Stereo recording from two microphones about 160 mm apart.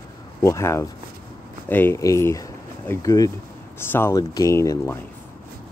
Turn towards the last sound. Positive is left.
turn(degrees=20)  # may be behind; listen again after turning